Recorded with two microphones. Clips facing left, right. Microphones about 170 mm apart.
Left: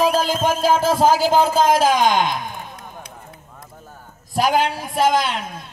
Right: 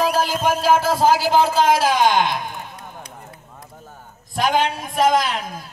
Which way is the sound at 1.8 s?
15° left (ahead or behind).